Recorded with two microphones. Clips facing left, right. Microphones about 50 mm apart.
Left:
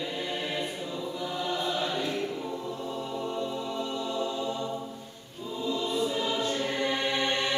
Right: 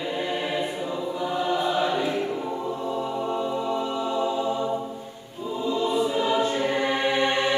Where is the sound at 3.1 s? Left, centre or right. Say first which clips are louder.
Right 6 dB; right.